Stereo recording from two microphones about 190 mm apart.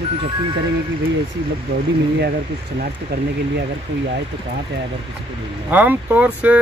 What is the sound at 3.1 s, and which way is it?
Speech, 55° right (ahead or behind).